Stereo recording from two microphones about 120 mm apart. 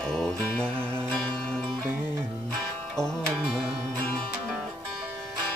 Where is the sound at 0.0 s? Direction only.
5° left (ahead or behind).